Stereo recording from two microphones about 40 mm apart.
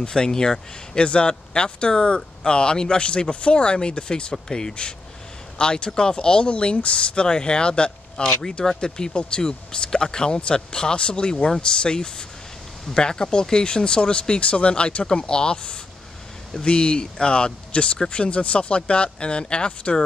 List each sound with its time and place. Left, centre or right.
0.0 s speech: centre
0.9 s speech: left